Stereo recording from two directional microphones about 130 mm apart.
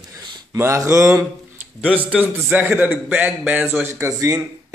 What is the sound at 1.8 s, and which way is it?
A man's voice, 10° right (ahead or behind).